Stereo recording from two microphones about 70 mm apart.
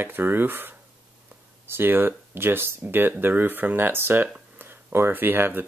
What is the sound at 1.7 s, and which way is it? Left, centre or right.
Speech, right.